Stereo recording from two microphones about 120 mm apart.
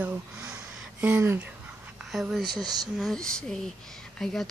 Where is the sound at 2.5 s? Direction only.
35° right (ahead or behind).